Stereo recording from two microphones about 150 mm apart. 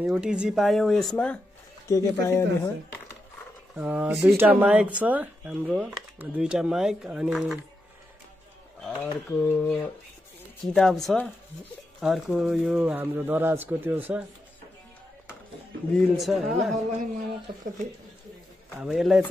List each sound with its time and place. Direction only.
0.0 s speech: 5° right (ahead or behind); by 1.4 s 10° left (ahead or behind)
1.9 s speech: 20° left (ahead or behind)
3.7 s speech: 10° right (ahead or behind)
8.8 s speech: 10° left (ahead or behind); by 14.2 s 10° right (ahead or behind)
16.2 s speech: centre (ahead or behind)
16.7 s a man's voice: 55° right (ahead or behind)
18.8 s speech: 5° right (ahead or behind)